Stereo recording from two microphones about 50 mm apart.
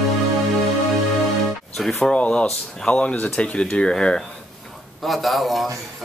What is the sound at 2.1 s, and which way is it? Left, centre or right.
Speech, left.